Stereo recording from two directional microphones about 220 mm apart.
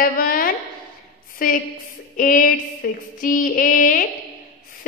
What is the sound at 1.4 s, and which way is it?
Female singing, 40° left (ahead or behind).